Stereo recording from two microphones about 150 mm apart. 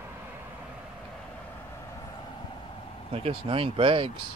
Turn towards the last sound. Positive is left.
turn(degrees=-35)  # may be behind; listen again after turning